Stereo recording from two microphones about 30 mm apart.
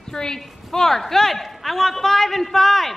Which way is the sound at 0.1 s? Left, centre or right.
Left.